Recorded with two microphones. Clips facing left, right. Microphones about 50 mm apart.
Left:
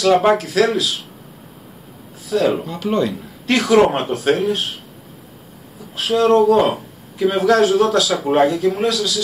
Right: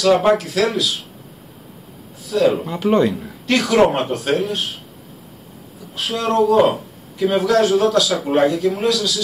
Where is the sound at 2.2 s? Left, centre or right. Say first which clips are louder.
Right 1 dB; centre.